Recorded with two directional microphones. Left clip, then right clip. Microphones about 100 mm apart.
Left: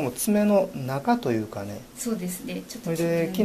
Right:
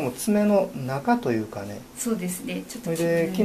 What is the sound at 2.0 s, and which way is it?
Speech, 10° left (ahead or behind).